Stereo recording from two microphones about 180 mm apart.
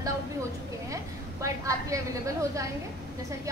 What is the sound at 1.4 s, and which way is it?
A woman's voice, 15° right (ahead or behind).